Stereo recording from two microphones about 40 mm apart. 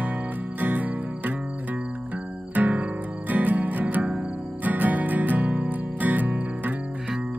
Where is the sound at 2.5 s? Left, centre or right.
Right.